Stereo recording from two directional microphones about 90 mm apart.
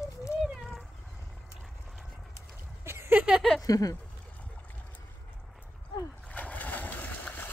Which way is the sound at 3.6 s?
40° left (ahead or behind).